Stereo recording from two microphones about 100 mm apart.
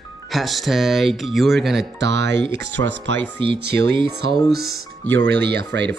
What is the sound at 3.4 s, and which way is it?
Speech, 55° right (ahead or behind).